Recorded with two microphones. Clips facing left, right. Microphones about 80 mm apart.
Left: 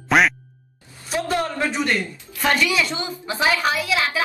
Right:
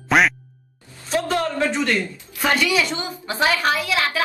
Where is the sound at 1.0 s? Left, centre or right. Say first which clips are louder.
Right 1 dB; centre.